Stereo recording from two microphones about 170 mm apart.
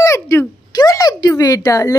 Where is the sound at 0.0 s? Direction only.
15° left (ahead or behind).